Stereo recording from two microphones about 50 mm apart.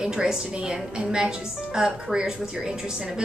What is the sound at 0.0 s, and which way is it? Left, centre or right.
A woman's voice, centre.